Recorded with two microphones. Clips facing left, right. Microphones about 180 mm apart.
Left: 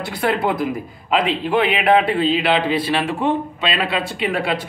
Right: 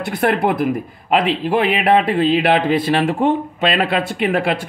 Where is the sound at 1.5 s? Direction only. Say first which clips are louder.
Right 1 dB; 45° right (ahead or behind).